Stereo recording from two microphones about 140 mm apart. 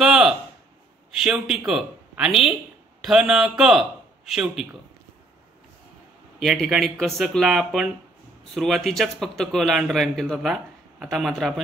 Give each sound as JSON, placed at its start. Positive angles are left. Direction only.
{"t": 0.0, "sound": "a sound", "side_deg": -5}
{"t": 1.1, "sound": "a man's voice", "side_deg": -5}
{"t": 6.4, "sound": "a man's voice", "side_deg": 0}